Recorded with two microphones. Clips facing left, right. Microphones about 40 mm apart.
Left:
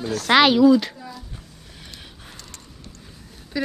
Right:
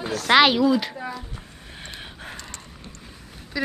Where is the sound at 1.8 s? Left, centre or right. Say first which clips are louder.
Right 5 dB; right.